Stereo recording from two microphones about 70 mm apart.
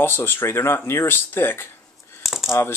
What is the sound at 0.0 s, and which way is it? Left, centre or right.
Speech, left.